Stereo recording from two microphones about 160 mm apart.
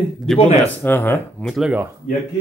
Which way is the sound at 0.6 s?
15° left (ahead or behind).